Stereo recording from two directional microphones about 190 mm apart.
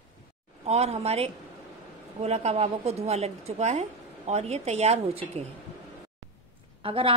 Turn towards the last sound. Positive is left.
turn(degrees=-30)  # may be behind; listen again after turning